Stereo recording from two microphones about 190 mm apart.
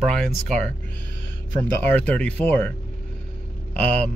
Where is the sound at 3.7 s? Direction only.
10° left (ahead or behind).